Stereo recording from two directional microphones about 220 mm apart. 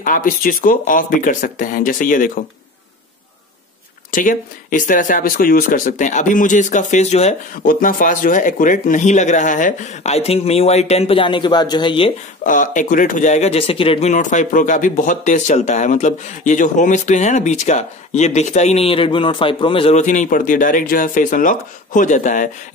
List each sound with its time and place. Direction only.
0.0 s speech: 40° left (ahead or behind)
4.1 s speech: 35° left (ahead or behind); by 12.1 s 20° left (ahead or behind)
12.4 s speech: 35° left (ahead or behind)